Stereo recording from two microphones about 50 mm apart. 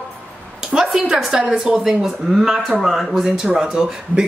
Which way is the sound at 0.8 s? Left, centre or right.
Centre.